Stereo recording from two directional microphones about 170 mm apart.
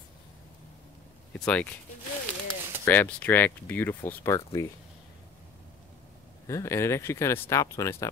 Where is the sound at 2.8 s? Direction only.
10° left (ahead or behind).